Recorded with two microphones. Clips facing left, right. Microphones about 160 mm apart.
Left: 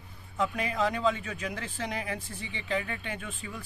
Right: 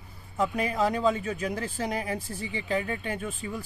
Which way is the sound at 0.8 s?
40° right (ahead or behind).